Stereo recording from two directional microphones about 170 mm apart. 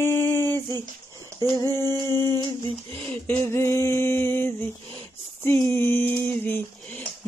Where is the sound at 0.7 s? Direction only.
20° right (ahead or behind).